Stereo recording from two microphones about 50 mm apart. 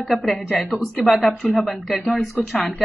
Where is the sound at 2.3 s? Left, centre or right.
Left.